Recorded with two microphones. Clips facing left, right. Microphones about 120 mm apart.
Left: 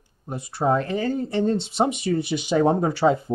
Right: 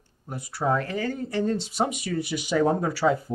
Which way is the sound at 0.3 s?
25° left (ahead or behind).